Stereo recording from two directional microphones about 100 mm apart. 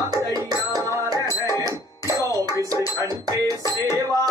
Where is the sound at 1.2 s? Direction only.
35° left (ahead or behind).